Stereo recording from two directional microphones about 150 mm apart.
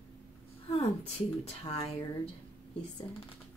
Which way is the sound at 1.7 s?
40° left (ahead or behind).